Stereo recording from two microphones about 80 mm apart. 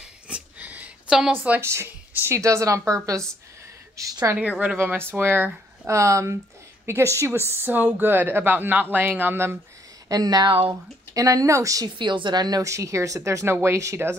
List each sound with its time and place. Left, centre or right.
0.0 s a sound: centre
1.3 s speech: centre
1.6 s speech: right
4.4 s speech: centre
5.9 s speech: right
10.0 s speech: right
12.0 s a woman's voice: right
12.6 s speech: right